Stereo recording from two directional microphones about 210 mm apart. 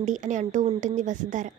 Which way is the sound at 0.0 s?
35° right (ahead or behind).